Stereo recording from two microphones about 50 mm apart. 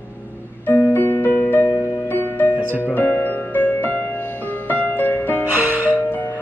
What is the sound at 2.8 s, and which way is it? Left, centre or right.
Music, left.